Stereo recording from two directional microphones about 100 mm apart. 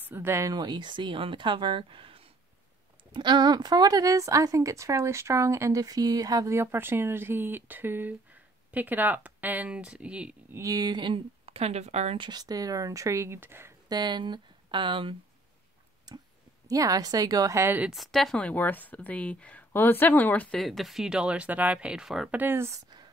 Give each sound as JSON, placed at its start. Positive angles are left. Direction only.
{"t": 0.1, "sound": "speech", "side_deg": -25}
{"t": 0.6, "sound": "speech", "side_deg": -50}
{"t": 3.1, "sound": "speech", "side_deg": -50}
{"t": 10.5, "sound": "speech", "side_deg": -35}
{"t": 12.2, "sound": "speech", "side_deg": -45}
{"t": 13.8, "sound": "speech", "side_deg": -45}
{"t": 16.1, "sound": "speech", "side_deg": -45}
{"t": 17.9, "sound": "speech", "side_deg": 0}
{"t": 20.5, "sound": "speech", "side_deg": 0}
{"t": 22.3, "sound": "speech", "side_deg": -20}